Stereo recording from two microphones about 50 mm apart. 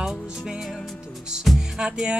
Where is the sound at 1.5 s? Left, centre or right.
Centre.